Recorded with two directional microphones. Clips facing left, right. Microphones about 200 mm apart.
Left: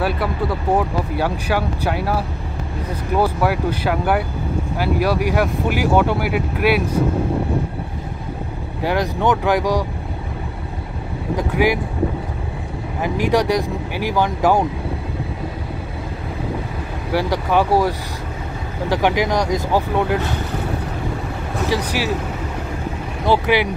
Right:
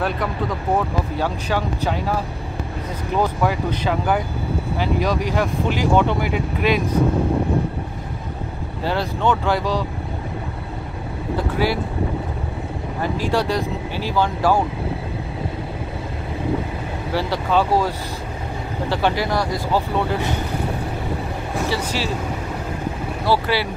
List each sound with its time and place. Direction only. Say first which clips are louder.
0.0 s speech: left 2 dB; 10° left (ahead or behind)
8.8 s speech: left 2 dB; 15° left (ahead or behind)
11.3 s speech: left 3 dB; 15° left (ahead or behind)
13.0 s speech: left 4 dB; 15° left (ahead or behind)
17.1 s speech: left 2 dB; 15° left (ahead or behind)
21.6 s speech: left 4 dB; 10° left (ahead or behind)
23.2 s speech: left 4 dB; 20° left (ahead or behind)